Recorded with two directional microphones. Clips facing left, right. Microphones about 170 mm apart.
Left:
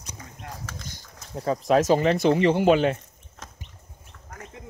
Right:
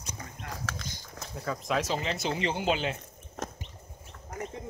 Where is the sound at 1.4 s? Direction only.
30° left (ahead or behind).